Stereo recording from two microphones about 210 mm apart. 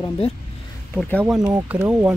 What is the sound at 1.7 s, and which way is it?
Speech, 10° right (ahead or behind).